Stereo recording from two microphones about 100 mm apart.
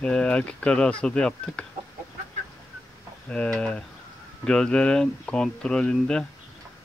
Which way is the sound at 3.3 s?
10° left (ahead or behind).